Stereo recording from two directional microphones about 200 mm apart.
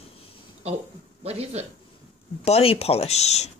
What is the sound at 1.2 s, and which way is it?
Speech, 30° right (ahead or behind).